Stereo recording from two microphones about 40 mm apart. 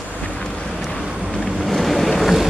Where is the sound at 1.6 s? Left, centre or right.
Centre.